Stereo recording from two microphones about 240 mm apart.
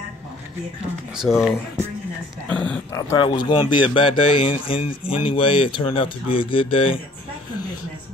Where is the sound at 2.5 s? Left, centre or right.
Centre; by 6.9 s left.